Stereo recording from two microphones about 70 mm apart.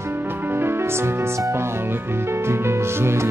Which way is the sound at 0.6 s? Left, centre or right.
Right.